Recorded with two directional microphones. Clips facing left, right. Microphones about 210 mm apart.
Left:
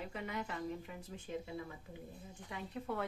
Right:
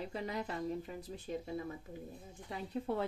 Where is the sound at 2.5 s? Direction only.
30° right (ahead or behind).